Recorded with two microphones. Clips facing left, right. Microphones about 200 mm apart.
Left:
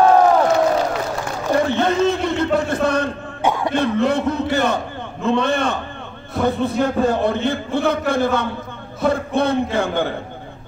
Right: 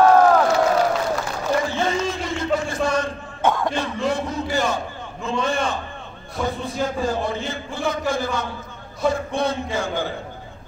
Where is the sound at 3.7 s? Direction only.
60° left (ahead or behind).